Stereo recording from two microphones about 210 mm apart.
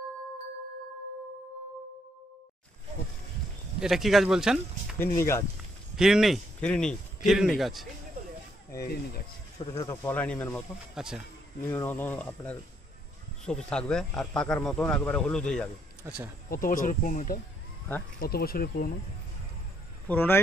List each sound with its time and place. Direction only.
3.8 s a man's voice: centre (ahead or behind)
4.9 s speech: 10° left (ahead or behind)
5.9 s a man's voice: centre (ahead or behind)
8.8 s speech: 45° left (ahead or behind)
9.7 s a man's voice: 15° left (ahead or behind); by 11.2 s centre (ahead or behind)
11.7 s a man's voice: 10° left (ahead or behind)
16.0 s speech: 10° right (ahead or behind)
16.4 s speech: 40° left (ahead or behind)
20.1 s speech: 10° left (ahead or behind)